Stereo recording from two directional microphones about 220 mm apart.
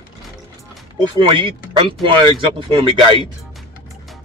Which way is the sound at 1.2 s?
25° right (ahead or behind).